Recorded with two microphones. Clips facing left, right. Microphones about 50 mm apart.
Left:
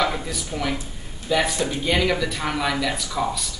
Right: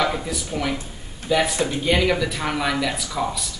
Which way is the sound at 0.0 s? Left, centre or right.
Centre.